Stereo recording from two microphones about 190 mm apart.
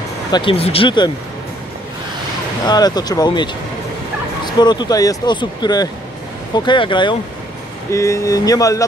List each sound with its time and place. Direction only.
0.3 s speech: 25° left (ahead or behind)
2.6 s speech: 20° left (ahead or behind)
4.5 s speech: 20° left (ahead or behind)